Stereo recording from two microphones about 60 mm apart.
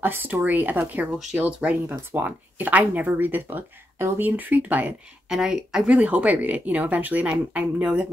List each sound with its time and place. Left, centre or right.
0.0 s speech: right
1.9 s speech: right
5.3 s speech: centre
5.9 s speech: right